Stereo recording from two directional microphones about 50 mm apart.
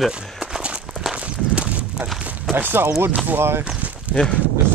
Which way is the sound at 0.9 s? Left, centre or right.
Centre.